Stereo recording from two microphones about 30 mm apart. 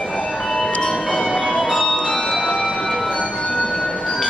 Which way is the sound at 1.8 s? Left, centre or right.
Left.